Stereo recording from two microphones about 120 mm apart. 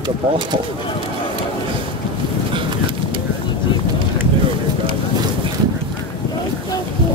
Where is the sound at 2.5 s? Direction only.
45° right (ahead or behind).